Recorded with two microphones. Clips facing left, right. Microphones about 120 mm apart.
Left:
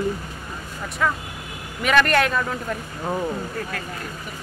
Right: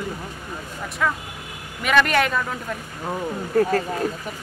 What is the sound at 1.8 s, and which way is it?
Speech, centre (ahead or behind).